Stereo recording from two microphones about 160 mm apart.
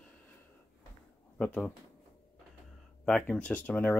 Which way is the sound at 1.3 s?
10° left (ahead or behind).